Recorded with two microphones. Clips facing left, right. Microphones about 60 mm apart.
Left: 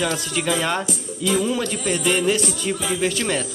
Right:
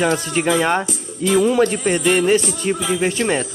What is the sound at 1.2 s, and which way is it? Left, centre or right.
Music, right.